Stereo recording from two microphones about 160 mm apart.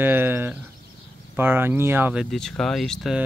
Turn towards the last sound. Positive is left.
turn(degrees=0)  # may be behind; listen again after turning